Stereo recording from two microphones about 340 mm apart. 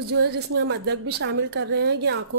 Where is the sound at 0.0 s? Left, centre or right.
Right.